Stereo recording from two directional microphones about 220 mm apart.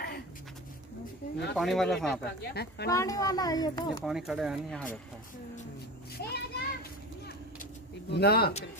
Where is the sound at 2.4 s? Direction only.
45° left (ahead or behind).